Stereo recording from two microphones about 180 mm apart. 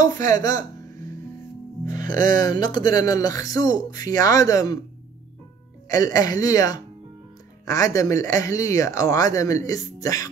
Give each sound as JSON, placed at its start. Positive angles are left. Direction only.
{"t": 0.3, "sound": "a man's voice", "side_deg": 20}
{"t": 1.9, "sound": "music", "side_deg": -45}
{"t": 2.4, "sound": "a man's voice", "side_deg": 25}
{"t": 5.9, "sound": "a man's voice", "side_deg": 20}